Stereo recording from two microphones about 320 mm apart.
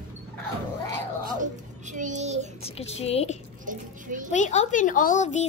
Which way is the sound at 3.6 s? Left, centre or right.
Right.